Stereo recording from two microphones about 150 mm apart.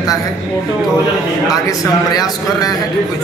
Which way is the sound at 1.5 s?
25° left (ahead or behind).